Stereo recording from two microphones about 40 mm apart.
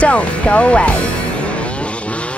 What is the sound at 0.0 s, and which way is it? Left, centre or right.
Speech, left.